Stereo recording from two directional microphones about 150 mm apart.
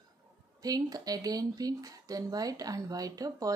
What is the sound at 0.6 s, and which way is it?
Speech, 25° right (ahead or behind).